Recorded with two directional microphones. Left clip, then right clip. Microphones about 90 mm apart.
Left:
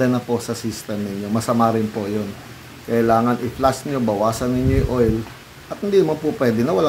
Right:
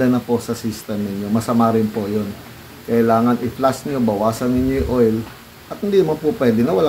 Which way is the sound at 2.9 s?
15° left (ahead or behind).